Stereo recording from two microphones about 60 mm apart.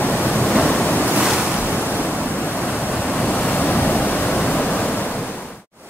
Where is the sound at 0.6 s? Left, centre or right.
Left.